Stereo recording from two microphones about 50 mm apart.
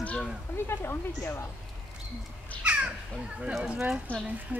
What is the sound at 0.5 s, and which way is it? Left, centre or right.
Speech, left.